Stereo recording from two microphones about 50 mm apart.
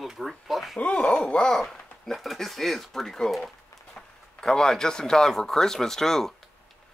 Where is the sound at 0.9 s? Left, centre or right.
Centre.